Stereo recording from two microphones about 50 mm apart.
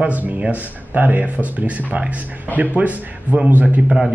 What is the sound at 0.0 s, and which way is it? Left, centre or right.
A man's voice, right.